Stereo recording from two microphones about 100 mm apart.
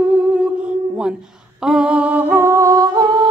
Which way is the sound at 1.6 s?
10° right (ahead or behind).